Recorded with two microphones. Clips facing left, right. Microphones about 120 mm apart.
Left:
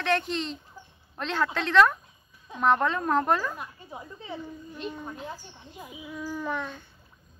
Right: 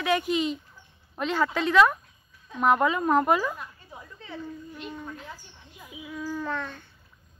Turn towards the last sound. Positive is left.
turn(degrees=15)  # may be behind; listen again after turning